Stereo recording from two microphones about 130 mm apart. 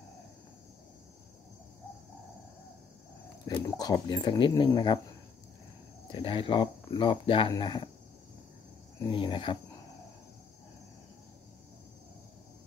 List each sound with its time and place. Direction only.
3.7 s speech: 30° left (ahead or behind)
6.1 s speech: 40° left (ahead or behind)
9.0 s speech: 35° left (ahead or behind)